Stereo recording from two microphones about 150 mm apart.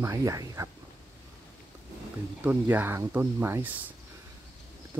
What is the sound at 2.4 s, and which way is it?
Speech, 10° right (ahead or behind).